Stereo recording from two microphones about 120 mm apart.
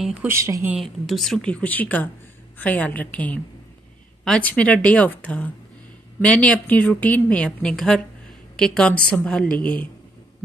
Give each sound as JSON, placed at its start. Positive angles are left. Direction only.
{"t": 0.3, "sound": "speech", "side_deg": -25}
{"t": 0.7, "sound": "a woman's voice", "side_deg": 0}